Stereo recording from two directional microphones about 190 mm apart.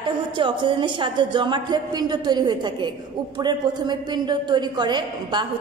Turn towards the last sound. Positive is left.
turn(degrees=-25)  # may be behind; listen again after turning